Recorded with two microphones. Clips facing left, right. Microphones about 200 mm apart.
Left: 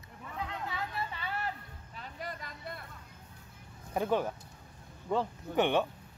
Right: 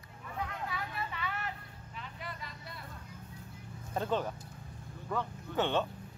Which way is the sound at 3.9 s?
15° left (ahead or behind).